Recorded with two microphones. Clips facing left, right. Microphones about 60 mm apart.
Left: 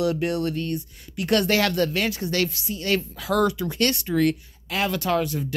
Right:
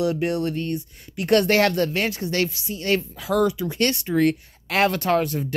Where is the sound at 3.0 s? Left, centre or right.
Centre.